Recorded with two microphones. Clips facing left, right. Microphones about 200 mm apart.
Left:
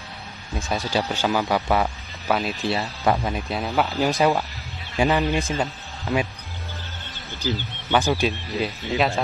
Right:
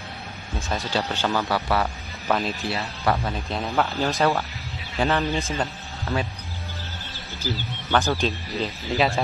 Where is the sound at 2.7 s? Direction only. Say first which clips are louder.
Left 3 dB; 20° left (ahead or behind).